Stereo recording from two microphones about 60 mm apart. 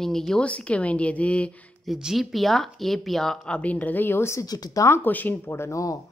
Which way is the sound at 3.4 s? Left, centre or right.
Left.